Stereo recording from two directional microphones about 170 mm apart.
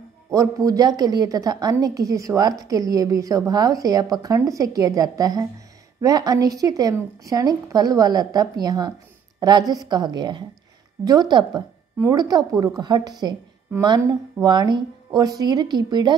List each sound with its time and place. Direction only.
0.3 s a woman's voice: 20° right (ahead or behind)